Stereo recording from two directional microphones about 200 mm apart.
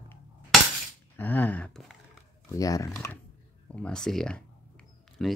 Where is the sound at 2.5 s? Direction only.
15° left (ahead or behind).